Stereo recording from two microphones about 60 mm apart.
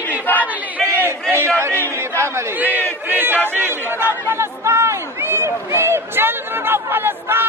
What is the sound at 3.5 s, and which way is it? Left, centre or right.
Speech, right.